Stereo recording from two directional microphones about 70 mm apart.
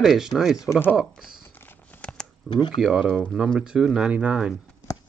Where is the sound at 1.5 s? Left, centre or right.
Left.